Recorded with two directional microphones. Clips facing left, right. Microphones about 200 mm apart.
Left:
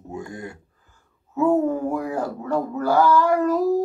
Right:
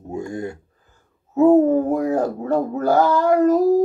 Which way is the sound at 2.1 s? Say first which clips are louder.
Right 5 dB; 20° right (ahead or behind).